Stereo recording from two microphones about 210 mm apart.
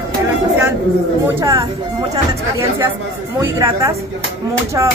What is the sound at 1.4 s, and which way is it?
Speech, 15° right (ahead or behind).